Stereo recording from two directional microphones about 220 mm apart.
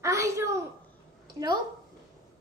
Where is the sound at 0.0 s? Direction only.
15° right (ahead or behind).